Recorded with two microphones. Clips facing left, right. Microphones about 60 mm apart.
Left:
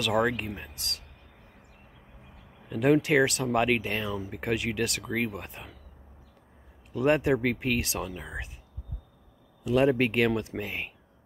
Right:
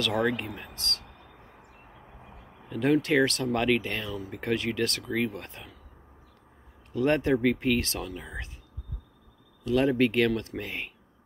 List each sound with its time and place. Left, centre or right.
0.0 s speech: centre
2.7 s speech: centre
6.9 s speech: centre
9.7 s speech: centre
10.6 s speech: centre